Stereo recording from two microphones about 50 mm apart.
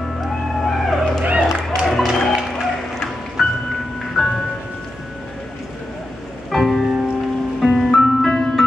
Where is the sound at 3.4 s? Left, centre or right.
Centre.